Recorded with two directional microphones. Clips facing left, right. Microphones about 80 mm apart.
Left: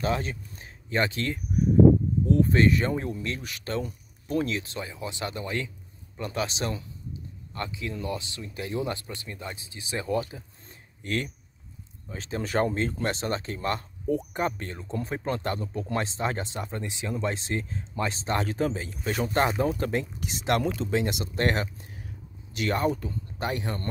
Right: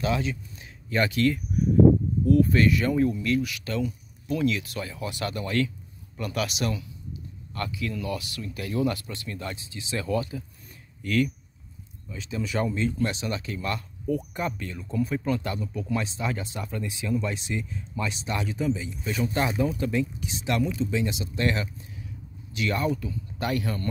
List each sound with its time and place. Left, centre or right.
0.0 s speech: left
12.1 s speech: left
23.4 s speech: left